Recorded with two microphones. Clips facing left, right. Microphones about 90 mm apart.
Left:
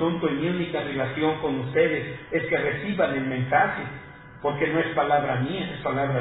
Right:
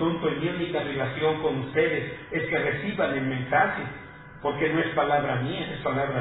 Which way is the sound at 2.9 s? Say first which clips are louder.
Left 4 dB; 40° left (ahead or behind).